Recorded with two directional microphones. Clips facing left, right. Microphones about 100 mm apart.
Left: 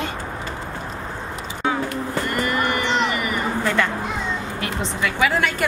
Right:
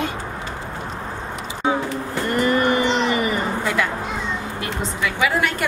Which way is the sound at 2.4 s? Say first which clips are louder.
Right 7 dB; 25° right (ahead or behind).